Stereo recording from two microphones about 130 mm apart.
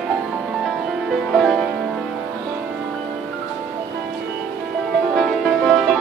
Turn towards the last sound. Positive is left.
turn(degrees=0)  # may be behind; listen again after turning